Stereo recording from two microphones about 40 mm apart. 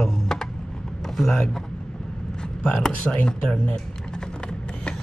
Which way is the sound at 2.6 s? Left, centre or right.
Left.